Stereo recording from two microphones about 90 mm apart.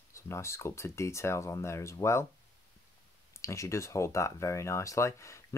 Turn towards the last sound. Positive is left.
turn(degrees=35)  # may be behind; listen again after turning